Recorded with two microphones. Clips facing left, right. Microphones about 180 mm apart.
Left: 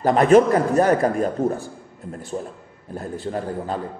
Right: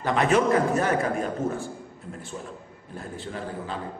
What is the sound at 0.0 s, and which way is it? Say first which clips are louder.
A man's voice: left 8 dB; 40° left (ahead or behind).